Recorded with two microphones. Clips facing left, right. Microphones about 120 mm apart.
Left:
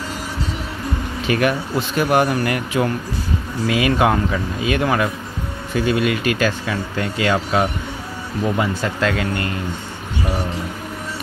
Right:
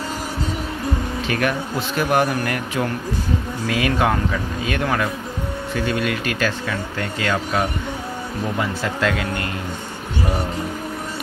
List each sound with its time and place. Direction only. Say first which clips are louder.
1.2 s speech: left 5 dB; 5° left (ahead or behind)
8.5 s speech: left 2 dB; centre (ahead or behind)